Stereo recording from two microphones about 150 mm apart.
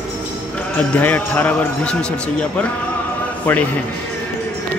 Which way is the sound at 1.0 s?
10° left (ahead or behind).